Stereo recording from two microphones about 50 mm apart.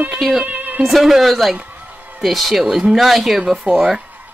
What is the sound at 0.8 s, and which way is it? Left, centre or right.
Speech, centre.